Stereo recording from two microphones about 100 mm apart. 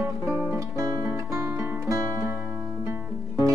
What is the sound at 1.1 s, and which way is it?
Music, 30° right (ahead or behind).